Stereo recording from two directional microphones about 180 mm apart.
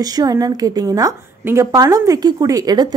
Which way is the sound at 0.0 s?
20° right (ahead or behind).